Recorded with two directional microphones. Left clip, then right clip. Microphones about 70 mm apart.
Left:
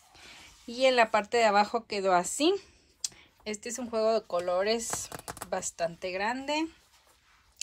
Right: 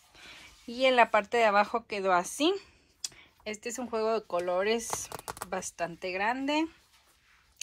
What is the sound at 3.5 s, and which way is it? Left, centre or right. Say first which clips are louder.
A woman's voice: even; centre.